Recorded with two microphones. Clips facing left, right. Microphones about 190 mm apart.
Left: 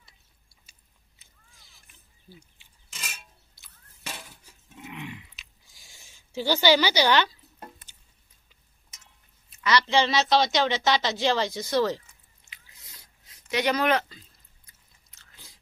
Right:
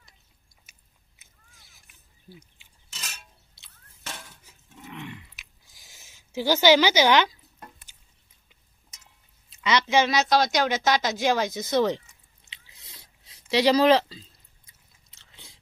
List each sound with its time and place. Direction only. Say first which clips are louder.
3.0 s a sound: left 1 dB; 5° left (ahead or behind)
4.7 s dog: even; 10° left (ahead or behind)
5.4 s a sound: right 1 dB; 15° right (ahead or behind)
6.0 s speech: right 2 dB; 15° right (ahead or behind)
9.6 s speech: right 1 dB; 20° right (ahead or behind)
13.5 s speech: right 6 dB; 30° right (ahead or behind)